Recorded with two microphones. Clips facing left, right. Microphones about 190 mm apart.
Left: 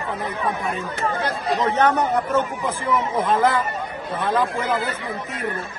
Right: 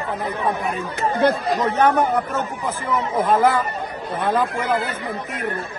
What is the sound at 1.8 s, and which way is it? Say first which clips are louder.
Speech: right 3 dB; 10° right (ahead or behind).